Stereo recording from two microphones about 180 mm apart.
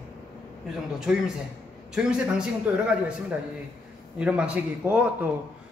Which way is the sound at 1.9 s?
5° right (ahead or behind).